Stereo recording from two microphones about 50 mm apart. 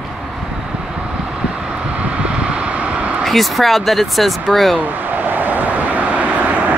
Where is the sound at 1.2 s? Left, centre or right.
Right.